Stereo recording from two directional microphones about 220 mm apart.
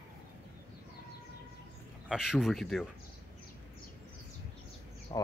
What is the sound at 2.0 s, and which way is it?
Speech, centre (ahead or behind).